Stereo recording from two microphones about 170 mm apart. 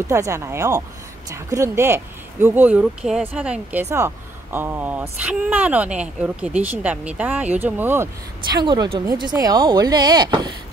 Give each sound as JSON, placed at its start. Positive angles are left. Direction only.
{"t": 0.1, "sound": "speech", "side_deg": -15}
{"t": 8.5, "sound": "speech", "side_deg": -25}